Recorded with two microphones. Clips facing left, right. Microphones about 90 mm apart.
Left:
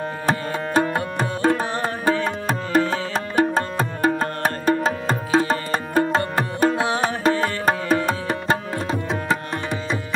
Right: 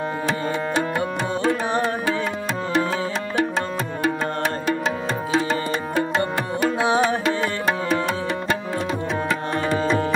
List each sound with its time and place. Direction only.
0.3 s music: 45° left (ahead or behind)
2.9 s music: 45° left (ahead or behind)